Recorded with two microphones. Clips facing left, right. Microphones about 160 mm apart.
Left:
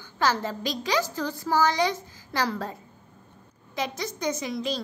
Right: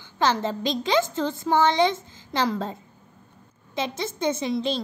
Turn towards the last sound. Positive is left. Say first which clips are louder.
# right 4 dB
turn(degrees=-25)  # may be behind; listen again after turning